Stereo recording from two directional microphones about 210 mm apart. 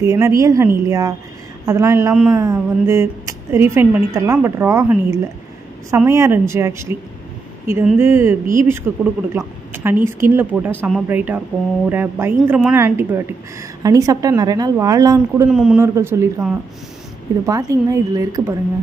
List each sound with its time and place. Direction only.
0.0 s speech: 15° right (ahead or behind)
15.5 s a man's voice: centre (ahead or behind)
15.8 s speech: 10° right (ahead or behind)